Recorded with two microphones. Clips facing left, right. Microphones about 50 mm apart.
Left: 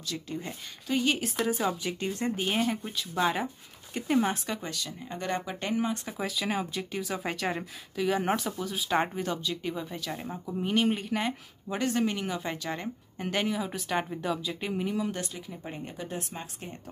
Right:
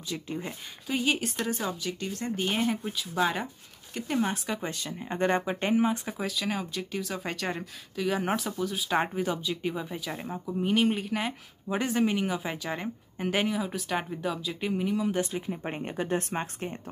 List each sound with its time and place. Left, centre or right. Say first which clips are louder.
0.1 s speech: right 2 dB; centre
1.7 s speech: left 2 dB; centre
2.3 s speech: right 5 dB; centre
4.6 s speech: right 2 dB; right
6.1 s speech: even; centre
15.3 s speech: right 6 dB; right